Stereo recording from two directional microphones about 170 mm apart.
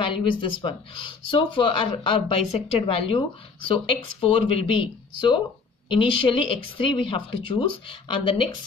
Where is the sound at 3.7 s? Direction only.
35° left (ahead or behind).